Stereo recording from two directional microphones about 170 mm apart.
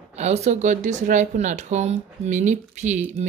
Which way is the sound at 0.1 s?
40° right (ahead or behind).